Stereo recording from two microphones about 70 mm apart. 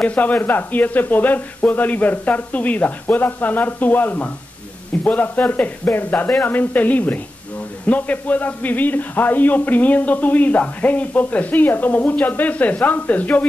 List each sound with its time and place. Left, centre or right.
0.0 s a man's voice: left